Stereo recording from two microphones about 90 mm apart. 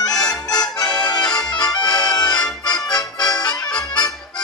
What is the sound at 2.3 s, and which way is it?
Accordion, 55° left (ahead or behind).